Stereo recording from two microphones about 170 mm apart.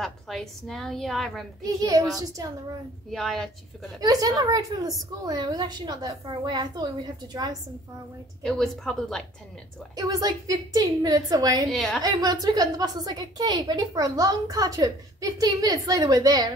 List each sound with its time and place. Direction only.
0.0 s a woman's voice: centre (ahead or behind)
1.6 s a woman's voice: 20° right (ahead or behind)
3.1 s a woman's voice: centre (ahead or behind)
4.0 s a woman's voice: 20° right (ahead or behind)
8.4 s a woman's voice: 5° left (ahead or behind)
9.9 s a woman's voice: 20° right (ahead or behind)
11.7 s a woman's voice: centre (ahead or behind)
12.0 s a woman's voice: 20° right (ahead or behind)